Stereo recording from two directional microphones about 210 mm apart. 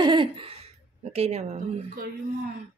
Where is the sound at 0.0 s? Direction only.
25° right (ahead or behind).